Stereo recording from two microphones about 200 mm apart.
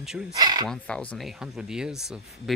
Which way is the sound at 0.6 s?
5° left (ahead or behind).